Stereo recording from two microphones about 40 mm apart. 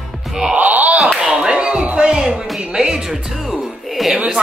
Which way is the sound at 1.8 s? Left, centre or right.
Right.